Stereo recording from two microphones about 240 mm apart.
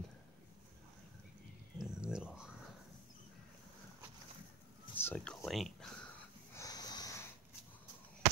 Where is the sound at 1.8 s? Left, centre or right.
Centre.